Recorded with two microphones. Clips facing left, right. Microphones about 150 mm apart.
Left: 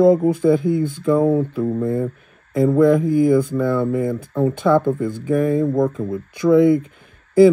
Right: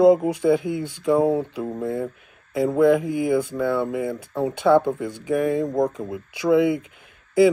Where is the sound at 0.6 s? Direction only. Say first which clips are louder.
Left 7 dB; 45° left (ahead or behind).